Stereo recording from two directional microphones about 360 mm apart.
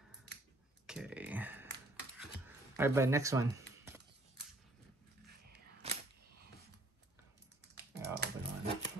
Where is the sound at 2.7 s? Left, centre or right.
Centre.